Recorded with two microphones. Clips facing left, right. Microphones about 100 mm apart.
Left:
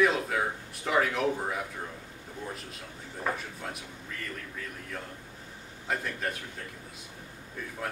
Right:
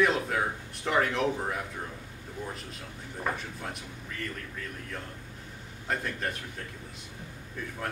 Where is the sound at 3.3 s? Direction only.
Centre (ahead or behind).